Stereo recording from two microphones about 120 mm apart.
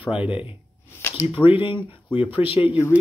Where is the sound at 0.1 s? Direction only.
10° right (ahead or behind).